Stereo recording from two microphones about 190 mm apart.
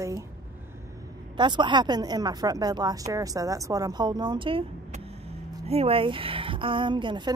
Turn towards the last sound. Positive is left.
turn(degrees=-25)  # may be behind; listen again after turning